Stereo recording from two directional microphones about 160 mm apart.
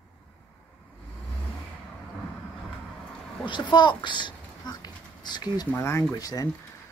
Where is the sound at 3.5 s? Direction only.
30° left (ahead or behind).